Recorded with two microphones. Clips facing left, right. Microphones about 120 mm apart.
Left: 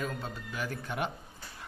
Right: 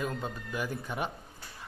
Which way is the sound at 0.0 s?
10° right (ahead or behind).